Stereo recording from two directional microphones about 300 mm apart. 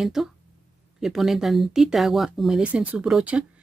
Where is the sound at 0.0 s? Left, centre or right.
Centre.